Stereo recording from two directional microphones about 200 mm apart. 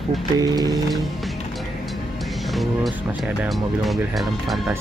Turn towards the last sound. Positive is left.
turn(degrees=0)  # may be behind; listen again after turning